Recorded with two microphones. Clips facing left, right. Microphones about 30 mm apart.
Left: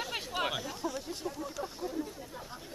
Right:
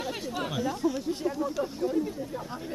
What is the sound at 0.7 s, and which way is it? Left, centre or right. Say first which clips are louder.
Speech: right 9 dB; centre.